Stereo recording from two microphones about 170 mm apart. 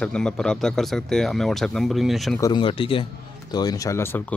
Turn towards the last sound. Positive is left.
turn(degrees=15)  # may be behind; listen again after turning